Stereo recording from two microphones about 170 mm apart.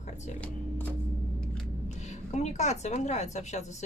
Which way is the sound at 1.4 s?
5° left (ahead or behind).